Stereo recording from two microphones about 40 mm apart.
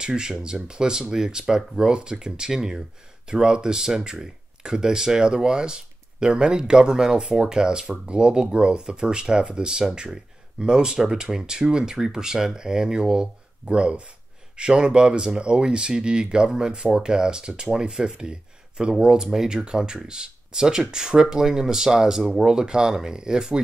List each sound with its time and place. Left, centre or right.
0.0 s speech: right